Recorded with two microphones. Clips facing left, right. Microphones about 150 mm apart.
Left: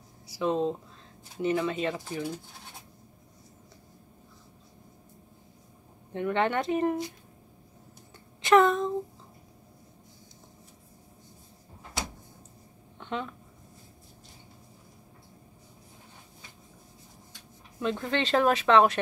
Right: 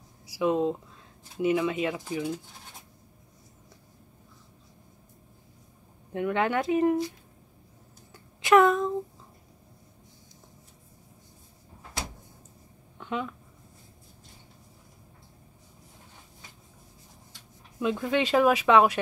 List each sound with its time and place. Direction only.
0.3 s speech: 10° right (ahead or behind)
6.1 s speech: 5° right (ahead or behind)
8.4 s speech: 10° right (ahead or behind)
13.0 s a sound: 5° right (ahead or behind)
17.7 s speech: 10° right (ahead or behind)